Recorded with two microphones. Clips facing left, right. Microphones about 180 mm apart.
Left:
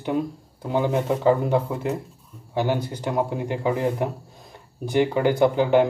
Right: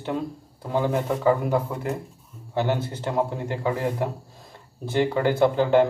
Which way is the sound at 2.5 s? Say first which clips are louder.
Left 1 dB; 10° left (ahead or behind).